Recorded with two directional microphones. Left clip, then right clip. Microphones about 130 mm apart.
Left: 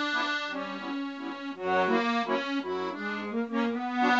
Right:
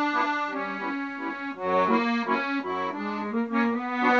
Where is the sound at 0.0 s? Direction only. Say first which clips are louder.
Right 4 dB; 15° right (ahead or behind).